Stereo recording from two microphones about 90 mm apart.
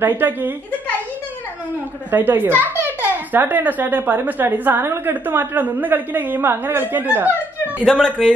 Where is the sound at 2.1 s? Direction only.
20° right (ahead or behind).